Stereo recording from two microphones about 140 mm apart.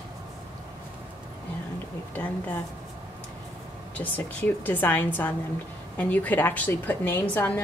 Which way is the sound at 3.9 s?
15° left (ahead or behind).